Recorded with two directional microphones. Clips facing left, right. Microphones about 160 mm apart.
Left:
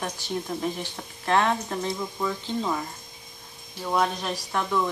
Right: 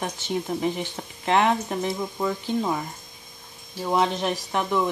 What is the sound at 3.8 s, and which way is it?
Speech, 20° right (ahead or behind).